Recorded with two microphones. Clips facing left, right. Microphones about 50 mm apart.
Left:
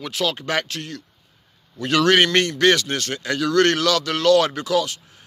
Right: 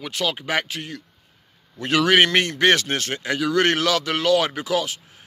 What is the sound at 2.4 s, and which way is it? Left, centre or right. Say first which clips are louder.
Speech: left 1 dB; right.